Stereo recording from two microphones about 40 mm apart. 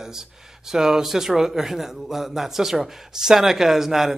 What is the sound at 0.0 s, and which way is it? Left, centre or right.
Speech, centre.